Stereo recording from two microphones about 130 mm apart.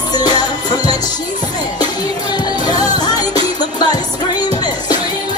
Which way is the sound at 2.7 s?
30° left (ahead or behind).